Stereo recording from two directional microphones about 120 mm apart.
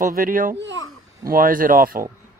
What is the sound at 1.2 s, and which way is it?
Speech, 25° right (ahead or behind).